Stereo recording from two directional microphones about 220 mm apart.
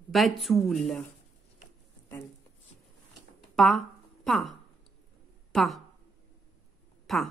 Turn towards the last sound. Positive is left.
turn(degrees=0)  # may be behind; listen again after turning